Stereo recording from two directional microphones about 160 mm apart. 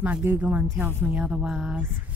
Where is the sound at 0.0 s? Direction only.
10° right (ahead or behind).